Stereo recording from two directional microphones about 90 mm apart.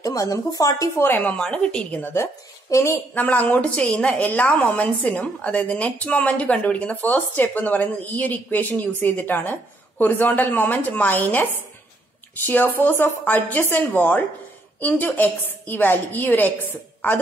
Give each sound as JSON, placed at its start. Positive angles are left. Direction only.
{"t": 0.0, "sound": "speech", "side_deg": 40}
{"t": 1.0, "sound": "a woman's voice", "side_deg": 25}
{"t": 1.3, "sound": "a woman's voice", "side_deg": 10}
{"t": 2.7, "sound": "speech", "side_deg": 30}
{"t": 3.2, "sound": "a woman's voice", "side_deg": 15}